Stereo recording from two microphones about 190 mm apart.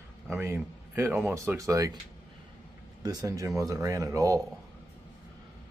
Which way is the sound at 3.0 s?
20° right (ahead or behind).